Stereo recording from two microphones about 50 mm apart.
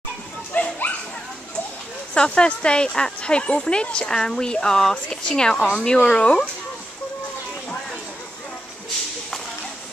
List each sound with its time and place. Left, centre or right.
0.5 s dog: left
2.1 s speech: centre